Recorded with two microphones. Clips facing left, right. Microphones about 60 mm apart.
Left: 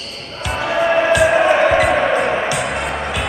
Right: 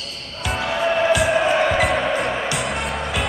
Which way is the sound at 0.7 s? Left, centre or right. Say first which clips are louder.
Left 4 dB; left.